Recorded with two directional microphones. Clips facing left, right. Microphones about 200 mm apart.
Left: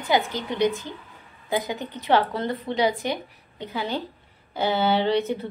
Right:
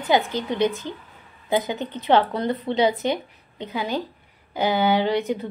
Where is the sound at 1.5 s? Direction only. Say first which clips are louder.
Right 3 dB; 20° right (ahead or behind).